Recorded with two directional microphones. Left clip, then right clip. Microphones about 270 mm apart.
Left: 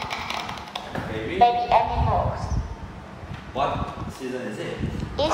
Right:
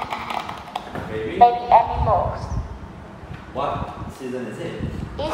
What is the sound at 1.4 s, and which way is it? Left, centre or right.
Speech, centre.